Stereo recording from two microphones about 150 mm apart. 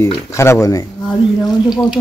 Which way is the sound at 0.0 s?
20° left (ahead or behind).